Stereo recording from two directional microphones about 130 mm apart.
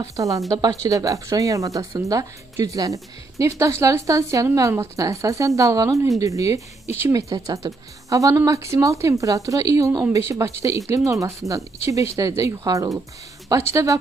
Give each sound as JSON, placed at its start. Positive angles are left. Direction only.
{"t": 0.0, "sound": "speech", "side_deg": -25}